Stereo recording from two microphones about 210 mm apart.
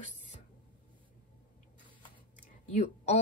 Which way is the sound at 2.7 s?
30° left (ahead or behind).